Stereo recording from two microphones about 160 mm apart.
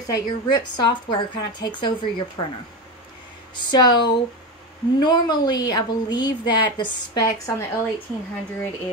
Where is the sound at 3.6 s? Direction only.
25° left (ahead or behind).